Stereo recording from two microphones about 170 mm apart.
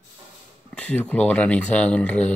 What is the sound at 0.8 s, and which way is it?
Speech, 10° left (ahead or behind).